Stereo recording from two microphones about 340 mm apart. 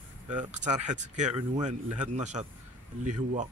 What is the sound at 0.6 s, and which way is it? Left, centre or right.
Speech, right.